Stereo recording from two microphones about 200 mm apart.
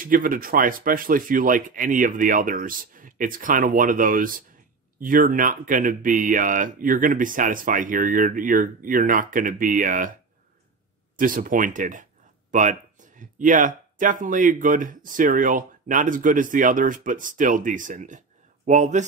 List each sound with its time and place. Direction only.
0.0 s speech: 45° right (ahead or behind)
11.1 s speech: 45° right (ahead or behind)